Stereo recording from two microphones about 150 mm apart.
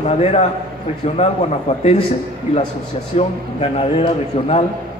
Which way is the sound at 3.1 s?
50° left (ahead or behind).